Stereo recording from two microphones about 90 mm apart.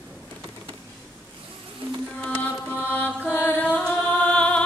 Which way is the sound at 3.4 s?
20° left (ahead or behind).